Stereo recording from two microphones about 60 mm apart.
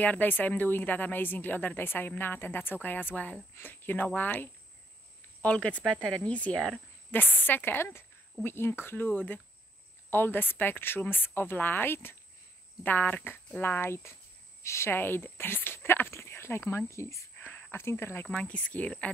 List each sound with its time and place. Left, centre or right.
0.0 s a woman's voice: left
5.4 s speech: left
7.1 s a woman's voice: left
12.8 s a woman's voice: left
15.0 s speech: left
17.4 s a sound: left
17.7 s a woman's voice: left
18.2 s speech: left